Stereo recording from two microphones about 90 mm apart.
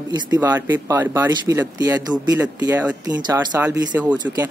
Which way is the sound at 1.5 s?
40° right (ahead or behind).